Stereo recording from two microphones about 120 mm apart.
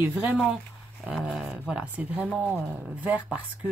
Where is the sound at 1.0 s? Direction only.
Centre (ahead or behind).